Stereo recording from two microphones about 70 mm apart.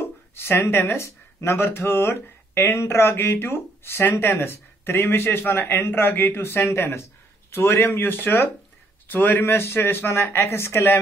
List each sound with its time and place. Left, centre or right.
0.0 s speech: left